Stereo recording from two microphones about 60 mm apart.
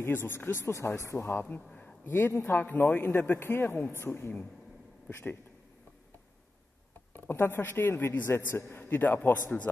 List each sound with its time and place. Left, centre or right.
0.0 s a man's voice: left
0.9 s speech: left
1.7 s a sound: centre
2.0 s a man's voice: left
2.3 s speech: left
2.6 s a man's voice: left
7.2 s a man's voice: left